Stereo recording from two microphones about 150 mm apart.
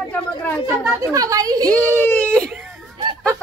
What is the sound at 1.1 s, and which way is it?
Speech, 25° right (ahead or behind).